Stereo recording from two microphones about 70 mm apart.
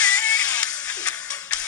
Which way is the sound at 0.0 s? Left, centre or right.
Centre.